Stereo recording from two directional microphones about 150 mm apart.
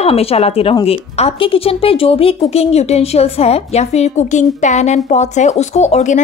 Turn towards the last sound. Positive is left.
turn(degrees=50)  # may be behind; listen again after turning